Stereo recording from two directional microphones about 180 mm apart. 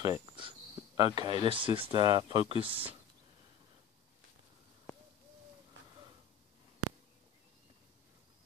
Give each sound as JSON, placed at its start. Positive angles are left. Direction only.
{"t": 0.0, "sound": "speech", "side_deg": -25}